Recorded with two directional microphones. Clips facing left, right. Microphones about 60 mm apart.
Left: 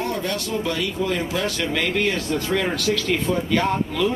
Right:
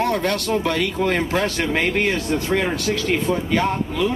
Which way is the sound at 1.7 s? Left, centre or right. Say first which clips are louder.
Right 1 dB; right.